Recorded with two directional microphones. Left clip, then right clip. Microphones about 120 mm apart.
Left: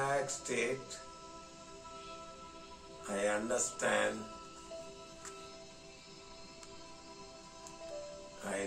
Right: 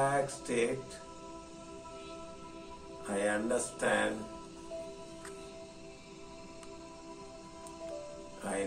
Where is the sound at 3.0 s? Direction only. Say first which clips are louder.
Right 2 dB; 20° left (ahead or behind).